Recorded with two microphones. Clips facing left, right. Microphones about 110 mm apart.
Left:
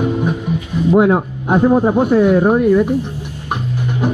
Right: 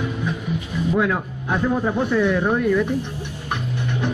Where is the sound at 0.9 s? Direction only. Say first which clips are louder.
Left 9 dB; 35° left (ahead or behind).